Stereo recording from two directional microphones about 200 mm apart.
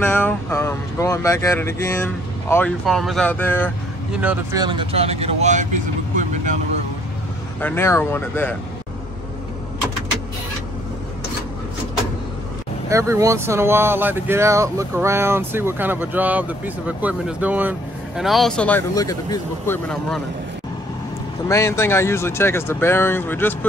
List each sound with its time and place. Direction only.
0.0 s speech: 10° left (ahead or behind)
4.2 s speech: 10° right (ahead or behind)
4.6 s speech: 25° right (ahead or behind)
7.6 s speech: 10° left (ahead or behind)
12.9 s speech: 15° right (ahead or behind); by 20.2 s 5° left (ahead or behind)
21.5 s speech: 15° left (ahead or behind)